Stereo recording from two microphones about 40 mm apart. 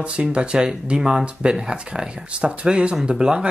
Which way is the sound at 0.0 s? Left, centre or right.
Right.